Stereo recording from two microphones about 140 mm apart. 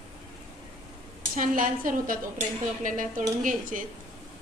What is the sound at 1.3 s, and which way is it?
A woman's voice, 75° right (ahead or behind).